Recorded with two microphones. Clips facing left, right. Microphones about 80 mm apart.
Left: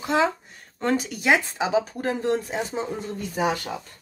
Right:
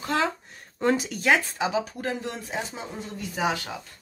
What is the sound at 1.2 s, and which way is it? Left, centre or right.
Speech, centre.